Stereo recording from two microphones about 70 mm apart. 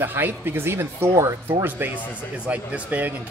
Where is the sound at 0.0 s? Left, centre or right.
Right.